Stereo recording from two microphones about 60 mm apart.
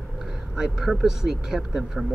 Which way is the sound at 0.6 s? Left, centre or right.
Centre.